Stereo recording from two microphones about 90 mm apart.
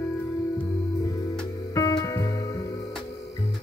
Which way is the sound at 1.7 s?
40° left (ahead or behind).